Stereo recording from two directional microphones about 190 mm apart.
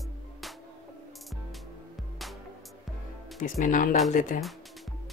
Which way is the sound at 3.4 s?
45° left (ahead or behind).